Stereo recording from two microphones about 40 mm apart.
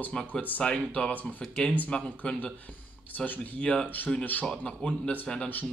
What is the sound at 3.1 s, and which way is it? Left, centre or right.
Speech, left.